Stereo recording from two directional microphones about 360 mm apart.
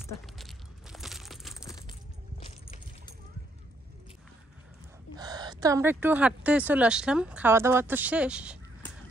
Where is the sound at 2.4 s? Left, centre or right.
Centre.